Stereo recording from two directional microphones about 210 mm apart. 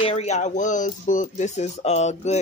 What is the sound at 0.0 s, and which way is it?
Speech, 30° left (ahead or behind).